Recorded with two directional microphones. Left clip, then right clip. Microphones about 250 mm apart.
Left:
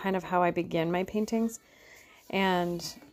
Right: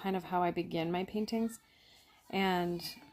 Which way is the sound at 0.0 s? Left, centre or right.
Left.